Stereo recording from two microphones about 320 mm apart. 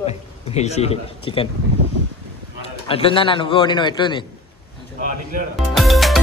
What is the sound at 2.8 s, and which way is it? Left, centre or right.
A man's voice, centre.